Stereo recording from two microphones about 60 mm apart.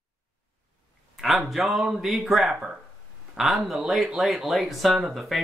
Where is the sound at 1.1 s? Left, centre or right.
Centre.